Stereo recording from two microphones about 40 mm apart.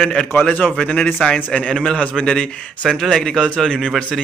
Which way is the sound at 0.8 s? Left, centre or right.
Left.